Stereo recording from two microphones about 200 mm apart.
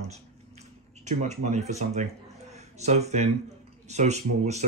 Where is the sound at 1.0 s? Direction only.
35° right (ahead or behind).